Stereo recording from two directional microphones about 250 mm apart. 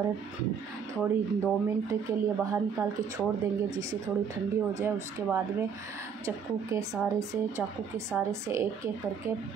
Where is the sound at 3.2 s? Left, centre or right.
Centre.